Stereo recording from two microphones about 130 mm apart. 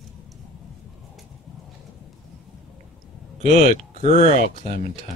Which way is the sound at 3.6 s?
65° left (ahead or behind).